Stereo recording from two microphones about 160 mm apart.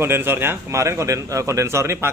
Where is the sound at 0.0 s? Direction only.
15° right (ahead or behind).